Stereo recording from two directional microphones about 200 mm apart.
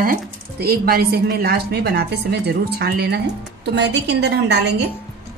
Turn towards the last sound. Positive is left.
turn(degrees=-55)  # may be behind; listen again after turning